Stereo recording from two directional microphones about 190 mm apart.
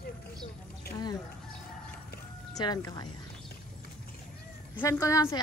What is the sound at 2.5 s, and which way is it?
Speech, 20° left (ahead or behind).